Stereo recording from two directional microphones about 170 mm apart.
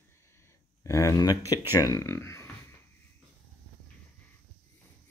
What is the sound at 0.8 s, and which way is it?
Speech, 20° left (ahead or behind).